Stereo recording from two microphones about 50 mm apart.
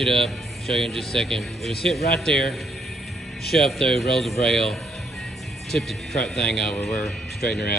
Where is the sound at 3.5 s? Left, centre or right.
Centre.